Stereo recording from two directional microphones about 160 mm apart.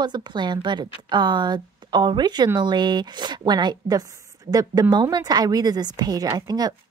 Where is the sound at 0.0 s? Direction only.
25° right (ahead or behind).